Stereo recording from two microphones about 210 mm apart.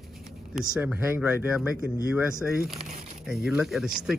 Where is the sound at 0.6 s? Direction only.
5° right (ahead or behind).